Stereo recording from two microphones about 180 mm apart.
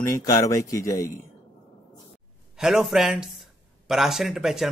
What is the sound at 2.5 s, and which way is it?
Speech, centre (ahead or behind).